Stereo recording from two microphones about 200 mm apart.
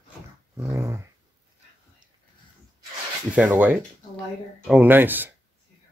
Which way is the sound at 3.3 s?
5° right (ahead or behind).